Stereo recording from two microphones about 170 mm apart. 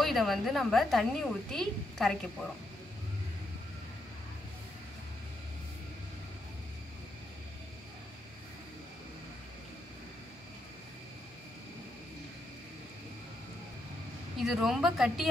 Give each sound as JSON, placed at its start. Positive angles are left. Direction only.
{"t": 0.0, "sound": "speech", "side_deg": 0}
{"t": 14.4, "sound": "speech", "side_deg": 0}